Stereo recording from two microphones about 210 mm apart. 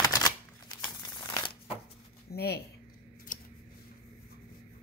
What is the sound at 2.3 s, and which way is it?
Speech, 50° left (ahead or behind).